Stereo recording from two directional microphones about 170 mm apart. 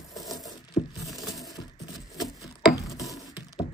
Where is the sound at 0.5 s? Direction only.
20° left (ahead or behind).